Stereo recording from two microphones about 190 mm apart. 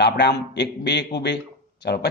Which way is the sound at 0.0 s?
60° left (ahead or behind).